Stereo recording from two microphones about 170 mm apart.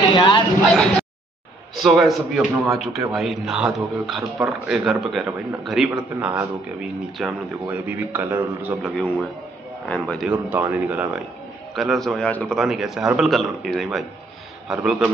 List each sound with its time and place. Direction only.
0.1 s a sound: 30° left (ahead or behind)
1.8 s a man's voice: centre (ahead or behind)
8.8 s a man's voice: centre (ahead or behind)
10.2 s a man's voice: 10° right (ahead or behind)